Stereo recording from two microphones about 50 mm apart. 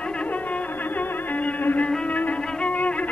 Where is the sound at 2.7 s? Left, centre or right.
Left.